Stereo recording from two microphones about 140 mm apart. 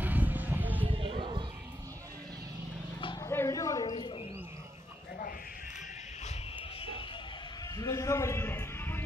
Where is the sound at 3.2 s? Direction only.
20° left (ahead or behind).